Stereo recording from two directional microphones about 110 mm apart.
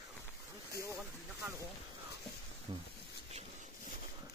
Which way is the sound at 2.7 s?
50° right (ahead or behind).